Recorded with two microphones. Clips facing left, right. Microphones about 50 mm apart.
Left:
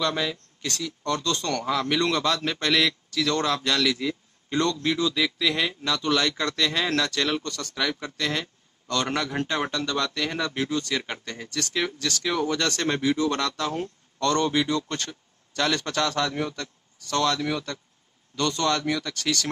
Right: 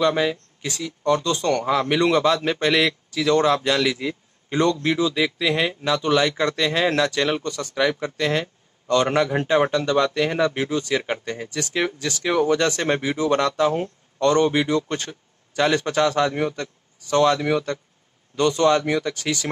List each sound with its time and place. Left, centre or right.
0.0 s a man's voice: centre